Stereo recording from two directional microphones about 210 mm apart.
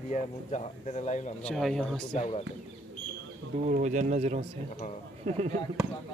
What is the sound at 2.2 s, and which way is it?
Speech, 30° left (ahead or behind).